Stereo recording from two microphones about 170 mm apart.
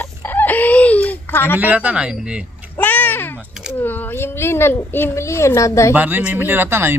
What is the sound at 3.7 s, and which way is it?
Speech, 10° left (ahead or behind).